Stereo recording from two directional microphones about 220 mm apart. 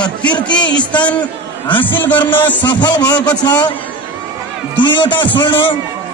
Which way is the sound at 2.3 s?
20° left (ahead or behind).